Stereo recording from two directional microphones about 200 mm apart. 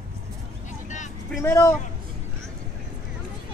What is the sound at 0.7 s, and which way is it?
Vehicle, 40° left (ahead or behind).